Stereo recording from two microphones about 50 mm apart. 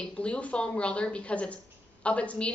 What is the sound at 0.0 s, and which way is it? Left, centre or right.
A woman's voice, left.